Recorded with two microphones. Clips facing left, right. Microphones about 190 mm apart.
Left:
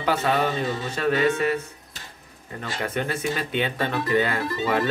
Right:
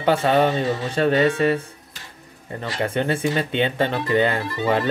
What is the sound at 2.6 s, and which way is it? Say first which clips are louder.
Speech: right 4 dB; 30° right (ahead or behind).